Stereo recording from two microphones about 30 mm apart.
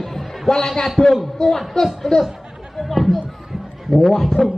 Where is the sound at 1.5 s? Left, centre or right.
Centre.